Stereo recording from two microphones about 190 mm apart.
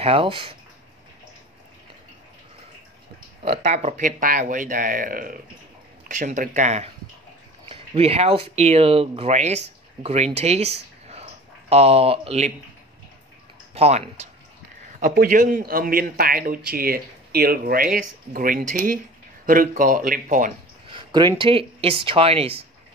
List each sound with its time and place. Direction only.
0.0 s speech: 30° right (ahead or behind)
3.4 s speech: 35° right (ahead or behind)
13.7 s speech: 35° right (ahead or behind)
15.0 s speech: 45° right (ahead or behind)
20.9 s a sound: 25° right (ahead or behind)
21.4 s speech: 30° right (ahead or behind)